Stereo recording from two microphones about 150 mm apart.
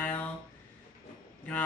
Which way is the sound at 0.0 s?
10° left (ahead or behind).